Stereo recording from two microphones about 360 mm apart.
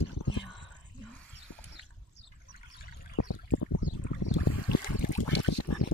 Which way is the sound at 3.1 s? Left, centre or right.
Left.